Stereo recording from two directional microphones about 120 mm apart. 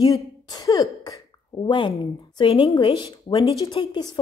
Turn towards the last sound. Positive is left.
turn(degrees=35)  # may be behind; listen again after turning